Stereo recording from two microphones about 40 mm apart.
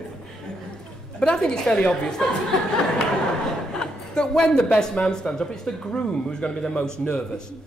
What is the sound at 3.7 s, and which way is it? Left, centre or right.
Speech, centre.